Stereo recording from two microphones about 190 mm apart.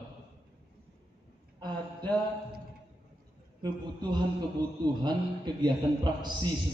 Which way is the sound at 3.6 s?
20° right (ahead or behind).